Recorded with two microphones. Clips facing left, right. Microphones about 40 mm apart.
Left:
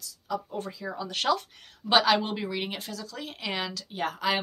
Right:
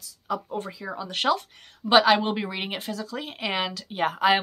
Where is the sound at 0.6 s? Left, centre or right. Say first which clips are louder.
Right 1 dB; centre.